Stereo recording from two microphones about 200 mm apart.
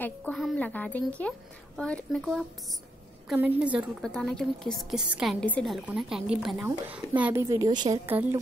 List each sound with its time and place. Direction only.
0.0 s a woman's voice: 5° left (ahead or behind); by 8.0 s 20° right (ahead or behind)
8.1 s a woman's voice: 10° right (ahead or behind)